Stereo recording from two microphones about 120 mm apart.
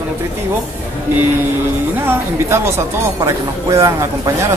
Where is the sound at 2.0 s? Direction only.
20° right (ahead or behind).